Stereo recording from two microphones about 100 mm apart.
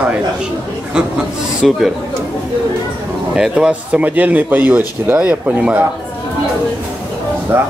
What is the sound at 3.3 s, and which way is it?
Speech, 10° right (ahead or behind).